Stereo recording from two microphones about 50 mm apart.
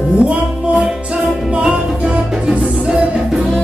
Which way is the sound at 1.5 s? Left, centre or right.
Centre.